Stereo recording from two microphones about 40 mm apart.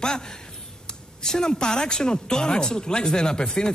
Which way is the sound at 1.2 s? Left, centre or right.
Centre.